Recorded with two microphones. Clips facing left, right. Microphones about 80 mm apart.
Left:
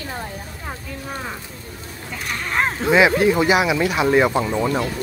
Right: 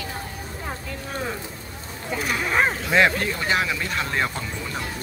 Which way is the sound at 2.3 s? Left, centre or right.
Centre.